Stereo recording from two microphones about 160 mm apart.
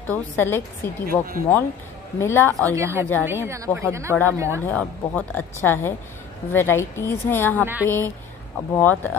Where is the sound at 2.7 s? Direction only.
15° right (ahead or behind).